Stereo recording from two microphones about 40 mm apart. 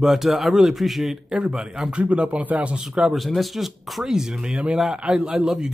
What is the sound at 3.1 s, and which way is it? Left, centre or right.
Speech, centre.